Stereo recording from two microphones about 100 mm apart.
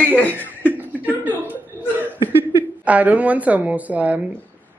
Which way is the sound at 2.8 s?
15° right (ahead or behind).